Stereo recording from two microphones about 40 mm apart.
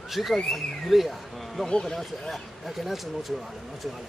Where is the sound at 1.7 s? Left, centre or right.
Left.